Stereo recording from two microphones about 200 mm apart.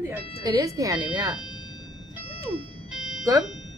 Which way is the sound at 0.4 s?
15° right (ahead or behind).